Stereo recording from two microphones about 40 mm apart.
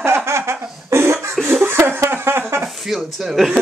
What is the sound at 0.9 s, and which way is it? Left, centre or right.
Cough, right.